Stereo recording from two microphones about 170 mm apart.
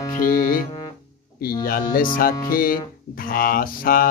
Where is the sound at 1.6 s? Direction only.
55° left (ahead or behind).